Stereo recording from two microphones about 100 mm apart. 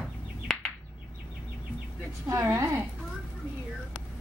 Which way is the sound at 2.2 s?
25° right (ahead or behind).